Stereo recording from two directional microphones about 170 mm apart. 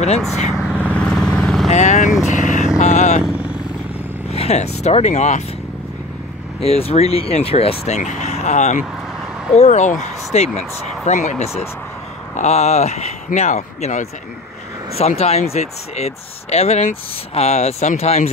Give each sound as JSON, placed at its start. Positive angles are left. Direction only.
{"t": 0.5, "sound": "vehicle", "side_deg": 0}
{"t": 1.7, "sound": "speech", "side_deg": 45}
{"t": 2.2, "sound": "vehicle", "side_deg": 45}
{"t": 4.3, "sound": "speech", "side_deg": 40}
{"t": 6.6, "sound": "speech", "side_deg": 35}